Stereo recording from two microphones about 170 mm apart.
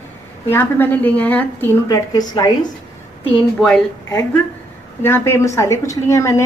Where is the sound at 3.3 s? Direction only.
5° left (ahead or behind).